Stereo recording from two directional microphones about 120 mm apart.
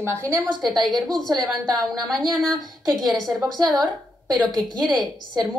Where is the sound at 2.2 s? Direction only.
Centre (ahead or behind).